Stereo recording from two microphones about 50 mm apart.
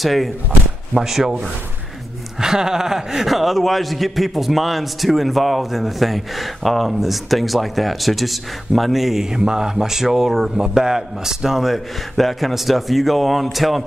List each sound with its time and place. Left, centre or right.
0.0 s a man's voice: centre
0.5 s speech: right
0.9 s a man's voice: centre
2.4 s a man's voice: centre